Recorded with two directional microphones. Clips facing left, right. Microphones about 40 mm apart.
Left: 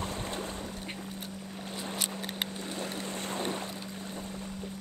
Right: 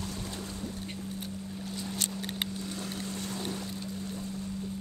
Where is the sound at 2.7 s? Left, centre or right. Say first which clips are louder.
Left 1 dB; left.